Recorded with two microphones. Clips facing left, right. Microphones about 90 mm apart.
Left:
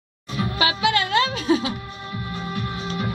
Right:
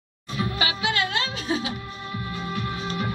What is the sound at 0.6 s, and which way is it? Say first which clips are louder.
Music: left 6 dB; 65° left (ahead or behind).